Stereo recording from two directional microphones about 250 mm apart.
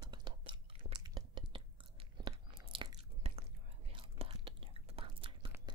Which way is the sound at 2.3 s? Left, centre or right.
Centre.